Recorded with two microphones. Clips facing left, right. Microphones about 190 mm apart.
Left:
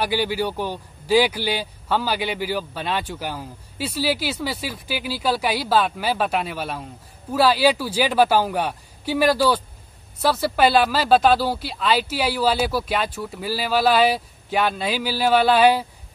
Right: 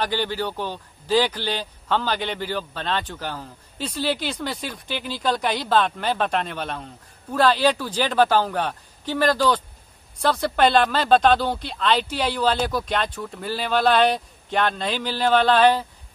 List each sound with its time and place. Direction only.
0.0 s a man's voice: 10° left (ahead or behind)